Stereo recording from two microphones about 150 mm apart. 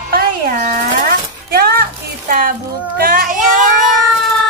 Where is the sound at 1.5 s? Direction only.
80° right.